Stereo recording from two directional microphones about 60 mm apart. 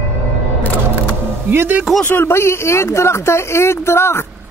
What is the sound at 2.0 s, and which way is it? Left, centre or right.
Speech, left.